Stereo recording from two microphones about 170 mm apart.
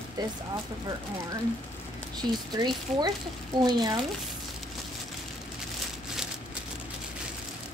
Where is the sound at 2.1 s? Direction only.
25° right (ahead or behind).